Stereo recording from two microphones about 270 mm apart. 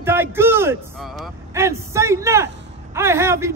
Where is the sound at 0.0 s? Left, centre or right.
Centre.